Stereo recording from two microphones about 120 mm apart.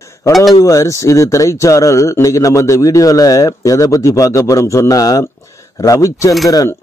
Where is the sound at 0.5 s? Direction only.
25° left (ahead or behind).